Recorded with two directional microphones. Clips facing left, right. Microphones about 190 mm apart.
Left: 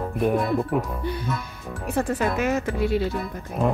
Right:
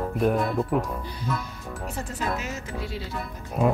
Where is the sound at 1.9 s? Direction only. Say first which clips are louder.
Left 8 dB; 60° left (ahead or behind).